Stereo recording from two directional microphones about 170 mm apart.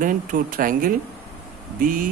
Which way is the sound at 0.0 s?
55° right (ahead or behind).